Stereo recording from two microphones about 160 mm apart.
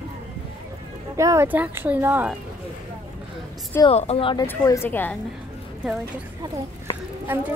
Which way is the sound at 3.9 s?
40° left (ahead or behind).